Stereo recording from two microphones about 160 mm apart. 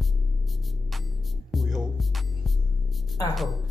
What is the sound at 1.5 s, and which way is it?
Music, centre (ahead or behind).